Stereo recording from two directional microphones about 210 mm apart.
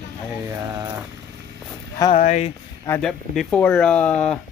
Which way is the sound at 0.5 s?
10° right (ahead or behind).